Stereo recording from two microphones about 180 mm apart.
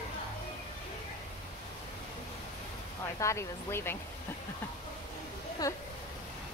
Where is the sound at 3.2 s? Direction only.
15° left (ahead or behind).